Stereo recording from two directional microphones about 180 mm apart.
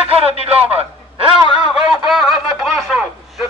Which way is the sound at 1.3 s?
5° right (ahead or behind).